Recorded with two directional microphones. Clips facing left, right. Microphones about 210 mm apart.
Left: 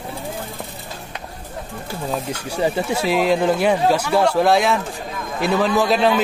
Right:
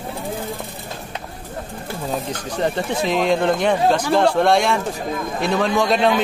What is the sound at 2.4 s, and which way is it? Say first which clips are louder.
A man's voice: left 2 dB; 10° left (ahead or behind).